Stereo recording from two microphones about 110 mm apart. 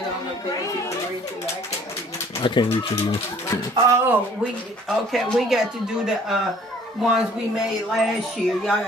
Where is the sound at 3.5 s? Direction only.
25° left (ahead or behind).